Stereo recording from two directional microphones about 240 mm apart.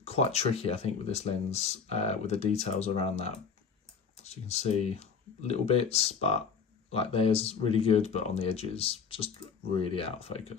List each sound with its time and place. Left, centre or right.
0.0 s speech: left